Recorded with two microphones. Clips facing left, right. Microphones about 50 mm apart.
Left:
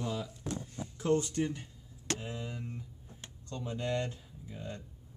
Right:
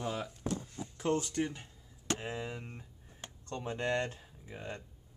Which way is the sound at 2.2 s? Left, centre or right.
Right.